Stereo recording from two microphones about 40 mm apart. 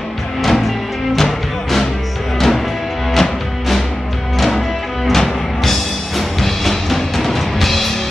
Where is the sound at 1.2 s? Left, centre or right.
Centre.